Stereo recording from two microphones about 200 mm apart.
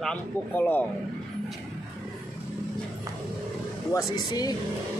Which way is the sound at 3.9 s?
15° left (ahead or behind).